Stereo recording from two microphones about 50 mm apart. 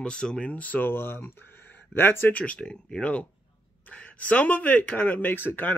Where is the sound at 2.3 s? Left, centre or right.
Left.